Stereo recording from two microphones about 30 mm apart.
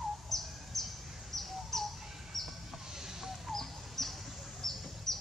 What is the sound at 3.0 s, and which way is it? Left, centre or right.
Chicken, centre.